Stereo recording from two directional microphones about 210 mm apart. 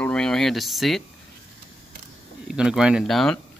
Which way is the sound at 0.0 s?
5° left (ahead or behind).